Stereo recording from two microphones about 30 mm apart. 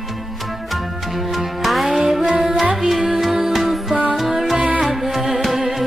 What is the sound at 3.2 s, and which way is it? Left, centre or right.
Music, centre.